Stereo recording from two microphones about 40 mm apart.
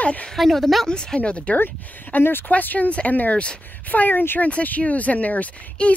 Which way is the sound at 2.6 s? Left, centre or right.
Left.